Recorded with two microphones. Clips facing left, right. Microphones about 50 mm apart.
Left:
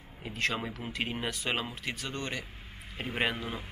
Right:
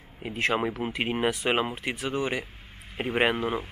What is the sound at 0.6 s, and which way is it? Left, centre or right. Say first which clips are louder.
Speech: right 9 dB; right.